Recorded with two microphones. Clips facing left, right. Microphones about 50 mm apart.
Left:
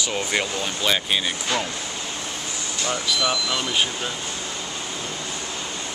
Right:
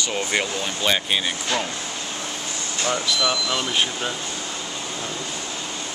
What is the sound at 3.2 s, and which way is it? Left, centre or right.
Speech, centre.